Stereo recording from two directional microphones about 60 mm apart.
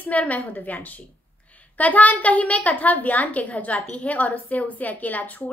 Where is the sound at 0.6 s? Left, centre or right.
Left.